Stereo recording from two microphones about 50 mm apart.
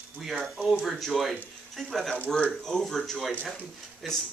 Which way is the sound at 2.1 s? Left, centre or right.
Left.